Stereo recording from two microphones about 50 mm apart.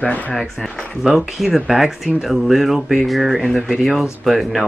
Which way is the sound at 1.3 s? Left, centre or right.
Centre.